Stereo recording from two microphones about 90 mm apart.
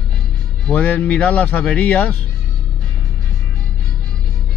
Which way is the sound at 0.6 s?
15° left (ahead or behind).